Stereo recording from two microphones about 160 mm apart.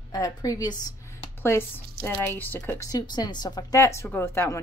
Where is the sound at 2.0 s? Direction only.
10° left (ahead or behind).